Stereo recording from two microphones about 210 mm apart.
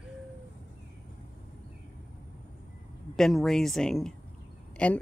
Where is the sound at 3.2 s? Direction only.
Centre (ahead or behind).